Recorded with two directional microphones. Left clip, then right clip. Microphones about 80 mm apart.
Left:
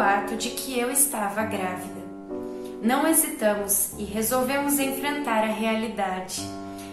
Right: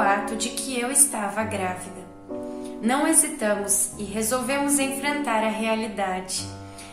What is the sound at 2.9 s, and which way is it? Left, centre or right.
A woman's voice, right.